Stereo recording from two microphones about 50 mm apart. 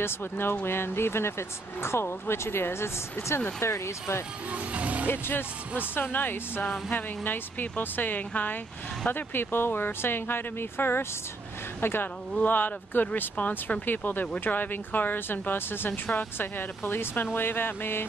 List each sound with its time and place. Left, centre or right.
0.0 s speech: left
4.5 s speech: right
5.1 s speech: left
12.4 s speech: left